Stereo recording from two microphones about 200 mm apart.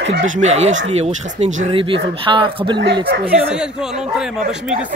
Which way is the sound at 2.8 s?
55° right (ahead or behind).